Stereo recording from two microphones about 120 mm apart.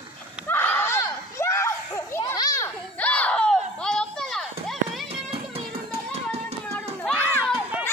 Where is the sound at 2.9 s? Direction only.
10° left (ahead or behind).